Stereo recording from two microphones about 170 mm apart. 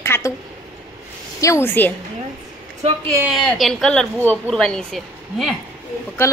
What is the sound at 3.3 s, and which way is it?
Speech, centre (ahead or behind).